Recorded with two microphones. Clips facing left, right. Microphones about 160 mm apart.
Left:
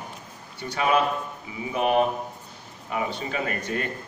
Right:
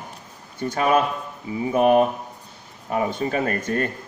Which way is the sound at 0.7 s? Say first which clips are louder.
Right 2 dB; 45° right (ahead or behind).